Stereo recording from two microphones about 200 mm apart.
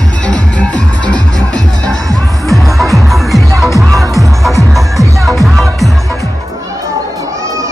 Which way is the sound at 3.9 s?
15° right (ahead or behind).